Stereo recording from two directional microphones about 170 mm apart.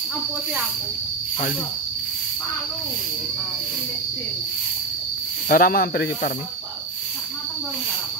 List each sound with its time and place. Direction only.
5.5 s speech: 60° left (ahead or behind)